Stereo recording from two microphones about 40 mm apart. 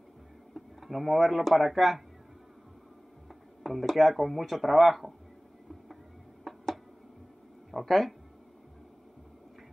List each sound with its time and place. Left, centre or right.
0.6 s speech: centre
3.6 s speech: centre
6.4 s a sound: centre
7.7 s speech: centre